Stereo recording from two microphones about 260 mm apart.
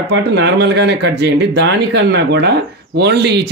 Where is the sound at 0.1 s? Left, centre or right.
Right.